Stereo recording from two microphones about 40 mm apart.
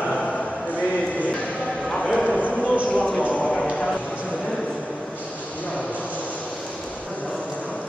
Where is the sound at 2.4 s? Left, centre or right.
Left.